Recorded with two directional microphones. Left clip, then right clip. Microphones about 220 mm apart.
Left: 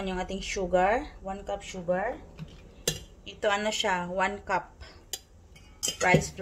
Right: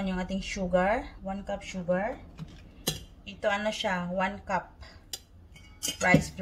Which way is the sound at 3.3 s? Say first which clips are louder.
Left 1 dB; 45° left (ahead or behind).